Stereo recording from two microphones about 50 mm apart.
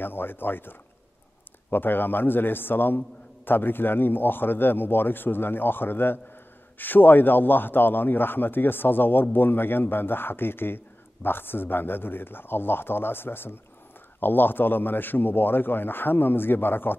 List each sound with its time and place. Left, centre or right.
0.0 s a man's voice: left